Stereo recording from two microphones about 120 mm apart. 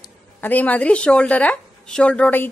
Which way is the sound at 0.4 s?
15° left (ahead or behind).